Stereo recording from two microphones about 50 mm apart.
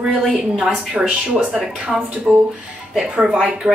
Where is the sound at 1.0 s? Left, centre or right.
Right.